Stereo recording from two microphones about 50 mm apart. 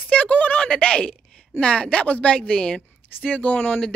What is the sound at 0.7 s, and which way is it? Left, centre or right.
Speech, left.